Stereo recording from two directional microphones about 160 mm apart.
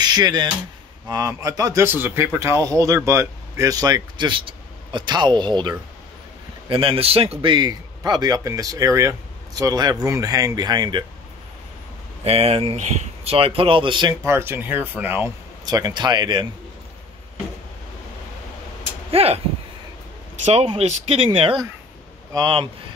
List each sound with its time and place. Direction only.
0.0 s a man's voice: 25° right (ahead or behind)
12.3 s speech: 40° right (ahead or behind)
14.2 s speech: 15° right (ahead or behind)
15.6 s a man's voice: 25° right (ahead or behind)
19.0 s speech: 40° right (ahead or behind)
20.4 s speech: 40° right (ahead or behind)